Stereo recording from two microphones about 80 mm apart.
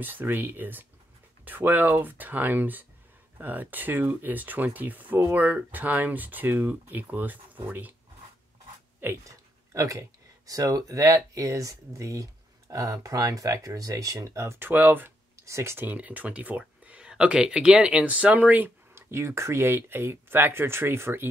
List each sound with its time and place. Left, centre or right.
0.0 s speech: right
9.0 s speech: right
9.8 s speech: right
15.4 s speech: right
15.8 s speech: right